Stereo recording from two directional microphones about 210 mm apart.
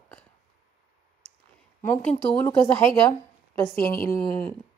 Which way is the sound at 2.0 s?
5° left (ahead or behind).